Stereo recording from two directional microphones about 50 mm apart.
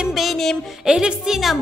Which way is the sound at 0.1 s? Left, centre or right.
Centre.